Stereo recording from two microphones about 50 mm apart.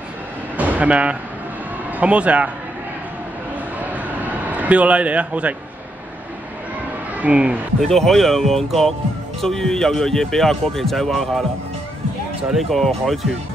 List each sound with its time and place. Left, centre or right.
0.6 s a sound: right
2.0 s speech: right
3.9 s a sound: right
7.2 s speech: right
7.8 s speech: centre
12.5 s speech: centre